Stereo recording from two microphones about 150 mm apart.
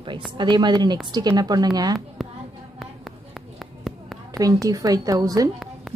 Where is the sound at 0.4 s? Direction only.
30° right (ahead or behind).